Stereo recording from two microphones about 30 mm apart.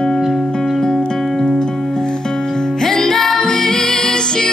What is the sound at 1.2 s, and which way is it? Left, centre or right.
Music, centre.